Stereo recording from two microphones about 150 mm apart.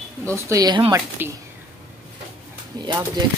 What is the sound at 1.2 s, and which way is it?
Speech, 15° right (ahead or behind).